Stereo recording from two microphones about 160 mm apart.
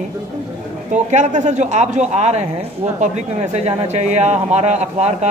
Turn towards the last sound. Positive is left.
turn(degrees=-45)  # may be behind; listen again after turning